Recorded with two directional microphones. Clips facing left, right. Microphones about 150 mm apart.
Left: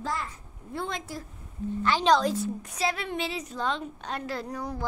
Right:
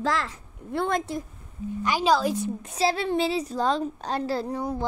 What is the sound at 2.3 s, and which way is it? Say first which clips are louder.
A woman's voice: right 2 dB; 20° right (ahead or behind).